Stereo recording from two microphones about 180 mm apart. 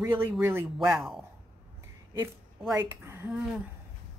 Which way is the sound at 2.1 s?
15° right (ahead or behind).